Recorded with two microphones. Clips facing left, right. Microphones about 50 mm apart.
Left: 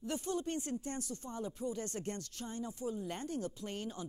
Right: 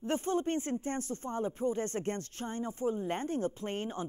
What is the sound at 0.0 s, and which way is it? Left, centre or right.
Speech, right.